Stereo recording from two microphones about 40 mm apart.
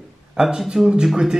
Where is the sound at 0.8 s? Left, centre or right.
Centre.